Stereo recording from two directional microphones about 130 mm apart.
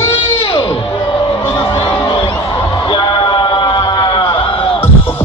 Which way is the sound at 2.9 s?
35° left (ahead or behind).